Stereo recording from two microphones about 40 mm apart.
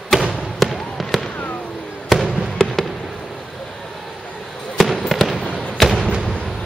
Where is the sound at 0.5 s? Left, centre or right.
Centre.